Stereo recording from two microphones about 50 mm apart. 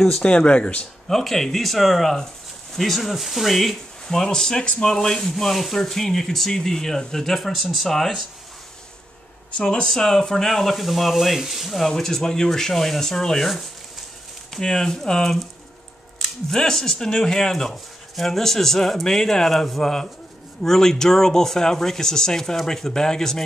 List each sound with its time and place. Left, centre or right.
0.2 s speech: left
1.0 s speech: centre
9.6 s speech: centre
14.5 s speech: centre